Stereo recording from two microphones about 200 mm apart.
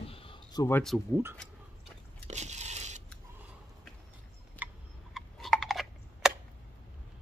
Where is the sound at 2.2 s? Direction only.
35° right (ahead or behind).